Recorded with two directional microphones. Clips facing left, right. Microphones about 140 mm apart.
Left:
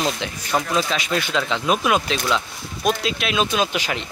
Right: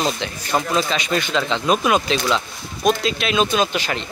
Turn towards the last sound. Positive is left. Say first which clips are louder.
# right 2 dB
turn(degrees=10)  # may be behind; listen again after turning